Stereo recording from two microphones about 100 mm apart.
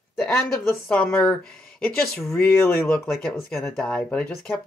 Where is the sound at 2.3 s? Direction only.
20° left (ahead or behind).